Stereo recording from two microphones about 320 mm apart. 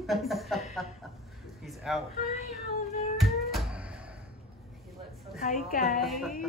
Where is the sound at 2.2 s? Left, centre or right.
Left.